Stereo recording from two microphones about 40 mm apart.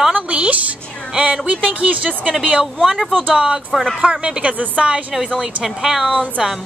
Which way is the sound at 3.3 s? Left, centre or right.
Right.